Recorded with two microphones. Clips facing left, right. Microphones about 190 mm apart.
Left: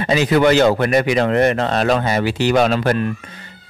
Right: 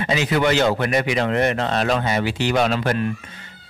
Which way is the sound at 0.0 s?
40° left (ahead or behind).